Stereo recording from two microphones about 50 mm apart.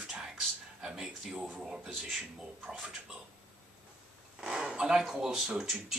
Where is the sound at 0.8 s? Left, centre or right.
Centre.